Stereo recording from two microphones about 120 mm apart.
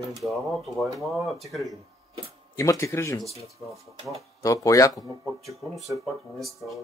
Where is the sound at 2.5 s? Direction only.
25° left (ahead or behind).